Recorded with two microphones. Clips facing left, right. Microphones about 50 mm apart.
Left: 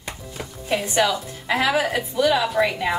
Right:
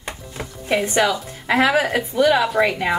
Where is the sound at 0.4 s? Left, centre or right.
Right.